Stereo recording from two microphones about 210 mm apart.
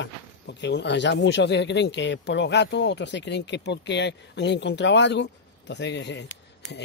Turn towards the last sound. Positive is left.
turn(degrees=55)  # may be behind; listen again after turning